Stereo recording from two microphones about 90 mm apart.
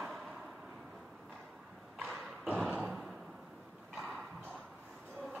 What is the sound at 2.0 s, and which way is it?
Dog, 10° right (ahead or behind).